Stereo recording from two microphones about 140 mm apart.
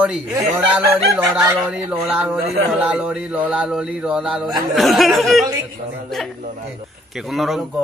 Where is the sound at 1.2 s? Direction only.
15° right (ahead or behind).